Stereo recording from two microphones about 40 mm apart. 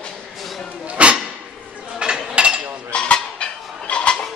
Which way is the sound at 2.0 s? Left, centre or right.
Right.